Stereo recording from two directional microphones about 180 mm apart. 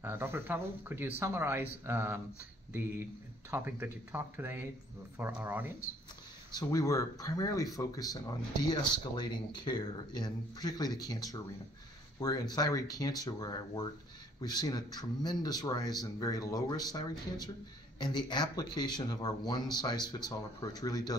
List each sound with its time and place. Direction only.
0.0 s speech: 15° right (ahead or behind)
6.5 s speech: 20° left (ahead or behind)